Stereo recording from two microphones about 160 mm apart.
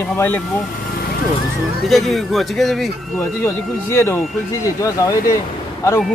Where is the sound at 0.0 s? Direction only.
15° left (ahead or behind).